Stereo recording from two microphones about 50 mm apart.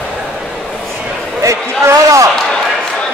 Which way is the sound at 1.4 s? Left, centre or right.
Right.